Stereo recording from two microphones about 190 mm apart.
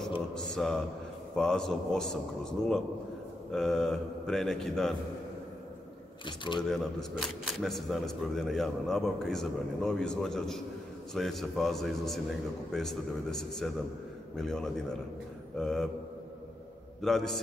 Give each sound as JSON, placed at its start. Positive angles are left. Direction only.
{"t": 0.3, "sound": "mantra", "side_deg": 5}
{"t": 1.3, "sound": "speech", "side_deg": 5}
{"t": 6.2, "sound": "speech", "side_deg": 25}
{"t": 6.7, "sound": "speech", "side_deg": 0}
{"t": 17.0, "sound": "speech", "side_deg": 0}